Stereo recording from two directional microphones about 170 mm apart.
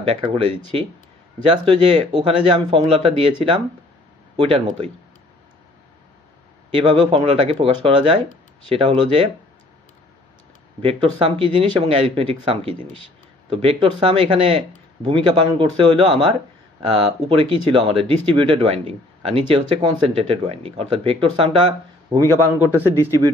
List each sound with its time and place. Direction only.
0.1 s speech: 35° right (ahead or behind)
6.8 s speech: 30° right (ahead or behind)
10.8 s speech: 35° right (ahead or behind)
22.1 s a man's voice: 20° right (ahead or behind)